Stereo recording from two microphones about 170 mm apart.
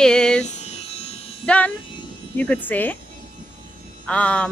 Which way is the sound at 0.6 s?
40° left (ahead or behind).